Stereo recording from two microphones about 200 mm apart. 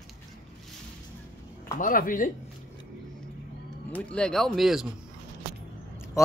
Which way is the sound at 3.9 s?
5° left (ahead or behind).